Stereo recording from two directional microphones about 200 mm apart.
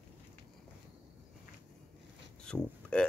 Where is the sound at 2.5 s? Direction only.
5° left (ahead or behind).